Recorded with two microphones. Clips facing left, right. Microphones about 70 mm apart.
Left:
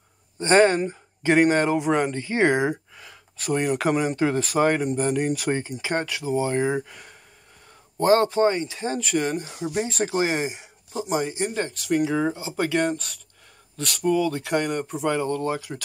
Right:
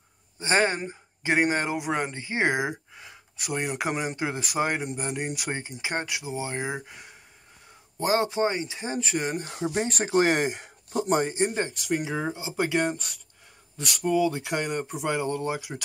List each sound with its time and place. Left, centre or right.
0.4 s speech: centre
9.6 s speech: right
9.9 s speech: right
10.2 s speech: right; by 15.8 s centre